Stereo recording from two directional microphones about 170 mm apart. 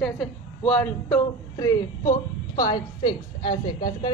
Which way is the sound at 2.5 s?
25° left (ahead or behind).